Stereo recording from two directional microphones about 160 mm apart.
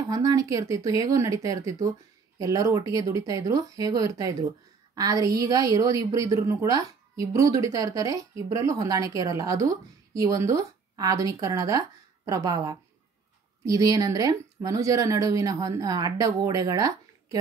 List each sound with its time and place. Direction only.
0.1 s a woman's voice: 20° right (ahead or behind)